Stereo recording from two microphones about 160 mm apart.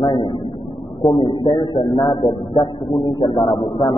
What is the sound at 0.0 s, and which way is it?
Vehicle, 30° left (ahead or behind).